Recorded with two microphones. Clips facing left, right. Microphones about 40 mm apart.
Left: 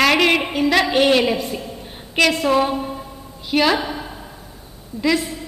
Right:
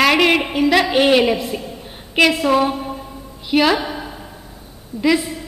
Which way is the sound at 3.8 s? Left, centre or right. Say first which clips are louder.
Right 1 dB; right.